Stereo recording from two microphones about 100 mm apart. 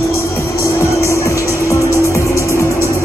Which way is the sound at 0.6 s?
30° left (ahead or behind).